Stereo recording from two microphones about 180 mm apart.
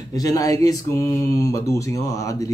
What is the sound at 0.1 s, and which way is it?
Speech, 20° left (ahead or behind).